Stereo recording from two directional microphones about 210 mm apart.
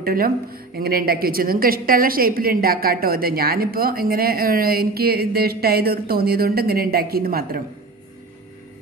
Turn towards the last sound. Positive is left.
turn(degrees=-45)  # may be behind; listen again after turning